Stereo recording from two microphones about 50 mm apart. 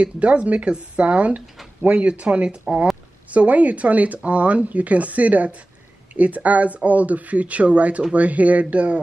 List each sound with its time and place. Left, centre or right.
0.0 s speech: right